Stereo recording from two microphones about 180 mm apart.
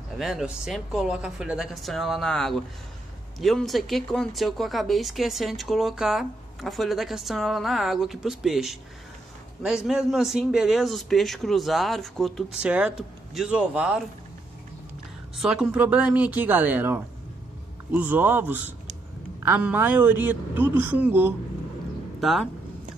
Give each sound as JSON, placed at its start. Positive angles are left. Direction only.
{"t": 0.2, "sound": "speech", "side_deg": 0}
{"t": 15.3, "sound": "a man's voice", "side_deg": -5}